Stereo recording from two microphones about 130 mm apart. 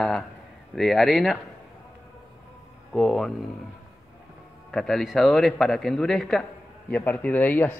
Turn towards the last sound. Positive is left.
turn(degrees=15)  # may be behind; listen again after turning